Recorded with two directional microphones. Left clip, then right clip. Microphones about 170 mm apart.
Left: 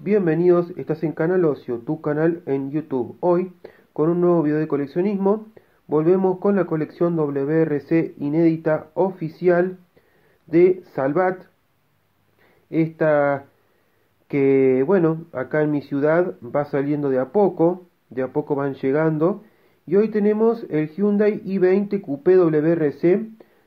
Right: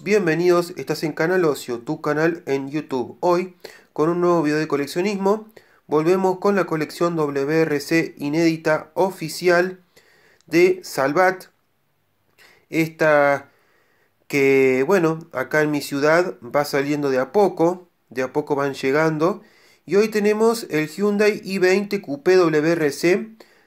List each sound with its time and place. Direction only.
0.0 s speech: 20° right (ahead or behind)
12.6 s speech: 20° right (ahead or behind)